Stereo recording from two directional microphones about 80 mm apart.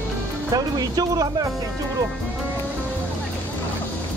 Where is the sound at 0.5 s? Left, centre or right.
Right.